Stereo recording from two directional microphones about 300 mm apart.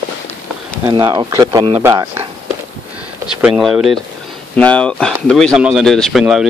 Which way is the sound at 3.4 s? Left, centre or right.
Centre.